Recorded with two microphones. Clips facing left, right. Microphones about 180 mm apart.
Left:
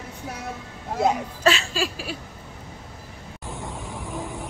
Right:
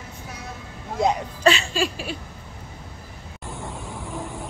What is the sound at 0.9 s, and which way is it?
Speech, 5° left (ahead or behind).